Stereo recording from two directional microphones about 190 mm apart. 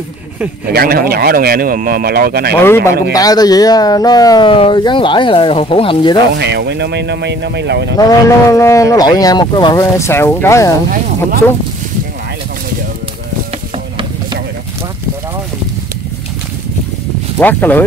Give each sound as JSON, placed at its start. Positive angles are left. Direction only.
{"t": 0.7, "sound": "speech", "side_deg": -55}
{"t": 2.6, "sound": "speech", "side_deg": 10}
{"t": 6.3, "sound": "speech", "side_deg": -60}
{"t": 8.0, "sound": "speech", "side_deg": 20}
{"t": 17.4, "sound": "speech", "side_deg": 10}